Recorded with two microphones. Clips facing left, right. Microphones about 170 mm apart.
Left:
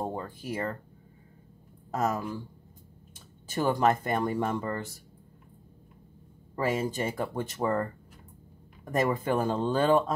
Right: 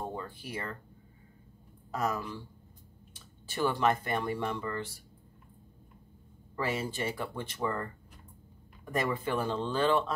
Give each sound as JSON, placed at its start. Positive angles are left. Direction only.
{"t": 0.0, "sound": "speech", "side_deg": 40}
{"t": 1.9, "sound": "speech", "side_deg": 45}
{"t": 3.4, "sound": "speech", "side_deg": 45}
{"t": 6.6, "sound": "speech", "side_deg": 45}
{"t": 8.9, "sound": "speech", "side_deg": 45}